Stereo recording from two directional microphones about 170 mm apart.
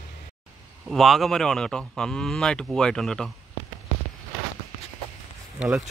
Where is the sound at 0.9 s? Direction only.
Centre (ahead or behind).